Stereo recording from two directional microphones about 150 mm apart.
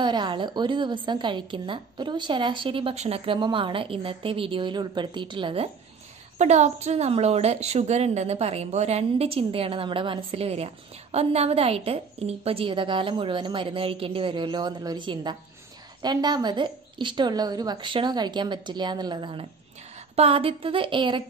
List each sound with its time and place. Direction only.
0.0 s a woman's voice: 30° right (ahead or behind)
6.3 s a woman's voice: 50° right (ahead or behind); by 21.2 s 35° right (ahead or behind)